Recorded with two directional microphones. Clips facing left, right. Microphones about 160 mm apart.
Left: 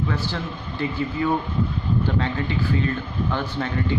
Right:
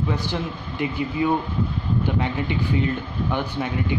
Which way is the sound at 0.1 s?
15° right (ahead or behind).